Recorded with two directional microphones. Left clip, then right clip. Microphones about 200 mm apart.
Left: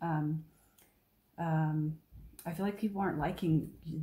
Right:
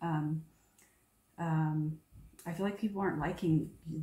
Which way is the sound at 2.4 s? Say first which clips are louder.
Even; 45° left (ahead or behind).